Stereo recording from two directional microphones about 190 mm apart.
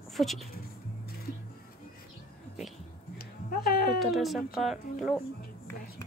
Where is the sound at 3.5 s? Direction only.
50° left (ahead or behind).